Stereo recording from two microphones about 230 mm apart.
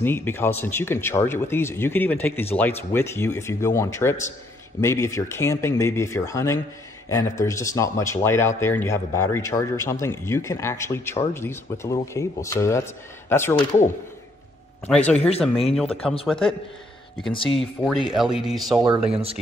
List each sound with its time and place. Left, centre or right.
0.0 s speech: centre
13.6 s a man's voice: left
14.9 s speech: centre
15.1 s speech: left
15.7 s speech: centre
17.5 s speech: centre